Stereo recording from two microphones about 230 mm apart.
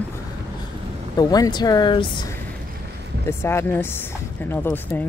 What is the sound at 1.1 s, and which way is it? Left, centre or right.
Speech, centre.